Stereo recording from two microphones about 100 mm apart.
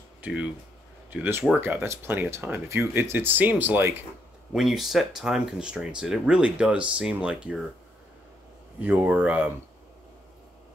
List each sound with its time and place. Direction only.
0.2 s speech: 10° right (ahead or behind)
4.6 s speech: centre (ahead or behind)
8.8 s speech: 15° right (ahead or behind)